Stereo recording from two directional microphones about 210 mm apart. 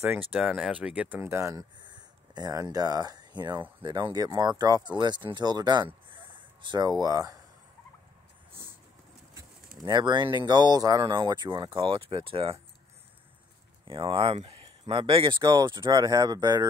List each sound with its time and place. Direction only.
0.3 s speech: centre (ahead or behind)
9.8 s speech: 20° right (ahead or behind)
13.8 s speech: 25° right (ahead or behind)